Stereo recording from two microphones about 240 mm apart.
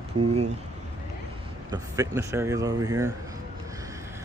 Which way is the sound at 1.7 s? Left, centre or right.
Centre.